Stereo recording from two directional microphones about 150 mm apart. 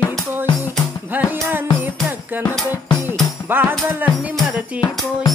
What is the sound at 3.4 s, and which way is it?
Music, 15° right (ahead or behind).